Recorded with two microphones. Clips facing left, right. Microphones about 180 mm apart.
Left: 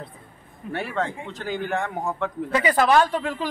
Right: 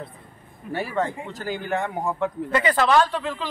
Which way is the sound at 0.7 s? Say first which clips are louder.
Right 1 dB; 5° right (ahead or behind).